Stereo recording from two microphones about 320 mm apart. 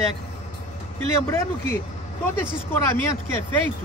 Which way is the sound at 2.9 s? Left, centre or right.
Centre.